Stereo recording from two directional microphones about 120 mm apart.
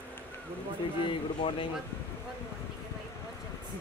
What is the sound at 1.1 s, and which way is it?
Speech, 45° left (ahead or behind).